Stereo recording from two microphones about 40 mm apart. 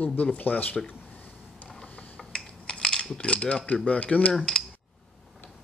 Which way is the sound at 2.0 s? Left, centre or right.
Left.